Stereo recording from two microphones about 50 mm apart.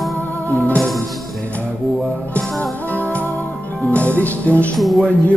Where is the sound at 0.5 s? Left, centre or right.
Left.